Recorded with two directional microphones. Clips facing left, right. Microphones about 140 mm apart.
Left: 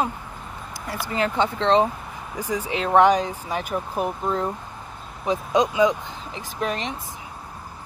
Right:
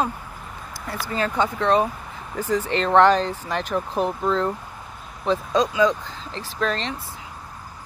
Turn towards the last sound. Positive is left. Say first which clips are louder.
# right 1 dB
turn(degrees=15)  # may be behind; listen again after turning